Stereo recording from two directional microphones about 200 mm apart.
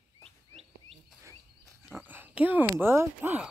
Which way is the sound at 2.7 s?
10° right (ahead or behind).